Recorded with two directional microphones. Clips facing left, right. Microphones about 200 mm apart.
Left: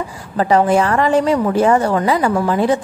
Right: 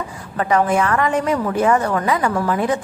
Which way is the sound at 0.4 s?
30° left (ahead or behind).